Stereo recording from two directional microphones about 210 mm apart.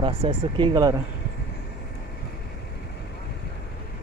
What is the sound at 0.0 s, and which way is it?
Speech, 25° right (ahead or behind).